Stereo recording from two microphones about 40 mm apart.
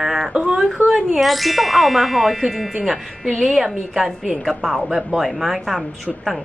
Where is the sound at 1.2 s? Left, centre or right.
Centre.